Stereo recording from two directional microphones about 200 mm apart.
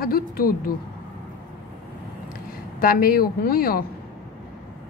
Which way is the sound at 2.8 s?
45° left (ahead or behind).